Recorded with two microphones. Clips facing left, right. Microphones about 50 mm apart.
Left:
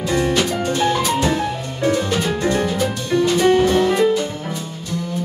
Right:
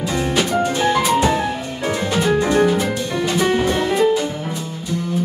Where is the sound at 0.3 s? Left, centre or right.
Centre.